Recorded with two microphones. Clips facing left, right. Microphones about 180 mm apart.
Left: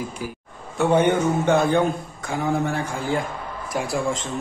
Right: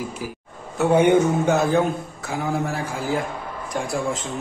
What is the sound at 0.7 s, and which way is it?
A man's voice, 10° right (ahead or behind).